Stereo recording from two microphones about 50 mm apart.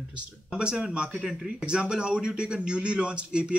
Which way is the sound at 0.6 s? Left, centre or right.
Right.